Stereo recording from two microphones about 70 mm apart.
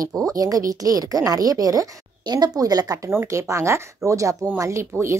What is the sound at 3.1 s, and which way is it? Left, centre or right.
Speech, right.